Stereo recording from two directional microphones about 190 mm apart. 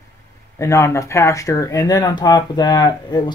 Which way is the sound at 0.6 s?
15° left (ahead or behind).